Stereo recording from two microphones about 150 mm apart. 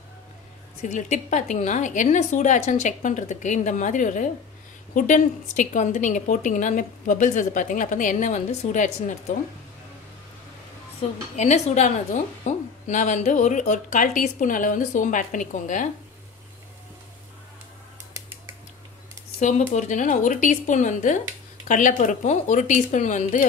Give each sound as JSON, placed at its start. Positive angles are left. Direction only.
{"t": 0.8, "sound": "a woman's voice", "side_deg": 55}
{"t": 11.0, "sound": "a woman's voice", "side_deg": 50}
{"t": 19.4, "sound": "a woman's voice", "side_deg": 50}